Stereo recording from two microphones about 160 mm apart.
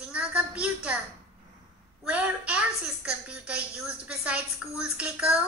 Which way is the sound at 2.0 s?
5° right (ahead or behind).